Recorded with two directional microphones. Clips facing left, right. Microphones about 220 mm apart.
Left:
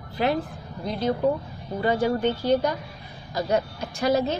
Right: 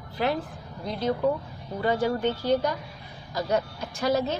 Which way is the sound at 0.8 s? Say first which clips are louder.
Left 2 dB; 15° left (ahead or behind).